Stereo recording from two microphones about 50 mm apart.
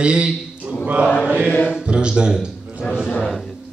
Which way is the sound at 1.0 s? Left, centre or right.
Left.